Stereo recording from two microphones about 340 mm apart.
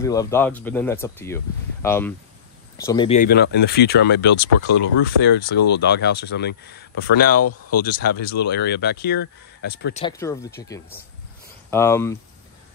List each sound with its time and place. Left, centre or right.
0.0 s speech: centre; by 10.0 s left
10.0 s speech: centre